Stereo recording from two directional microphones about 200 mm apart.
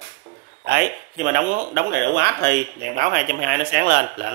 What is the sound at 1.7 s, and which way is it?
Speech, 55° right (ahead or behind).